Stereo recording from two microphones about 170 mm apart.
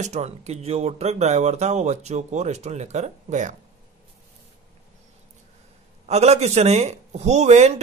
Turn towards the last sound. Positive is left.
turn(degrees=-40)  # may be behind; listen again after turning